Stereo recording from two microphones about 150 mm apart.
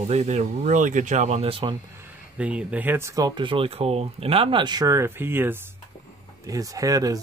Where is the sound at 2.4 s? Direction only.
10° right (ahead or behind).